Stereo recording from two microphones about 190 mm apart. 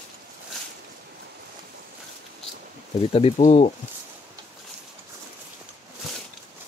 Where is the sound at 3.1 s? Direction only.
30° left (ahead or behind).